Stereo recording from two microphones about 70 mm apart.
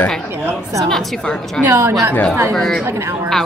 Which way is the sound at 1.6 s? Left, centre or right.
Right.